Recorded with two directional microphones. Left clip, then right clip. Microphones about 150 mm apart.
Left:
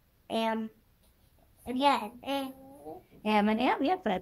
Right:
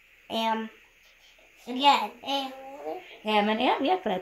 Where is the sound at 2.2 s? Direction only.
45° right (ahead or behind).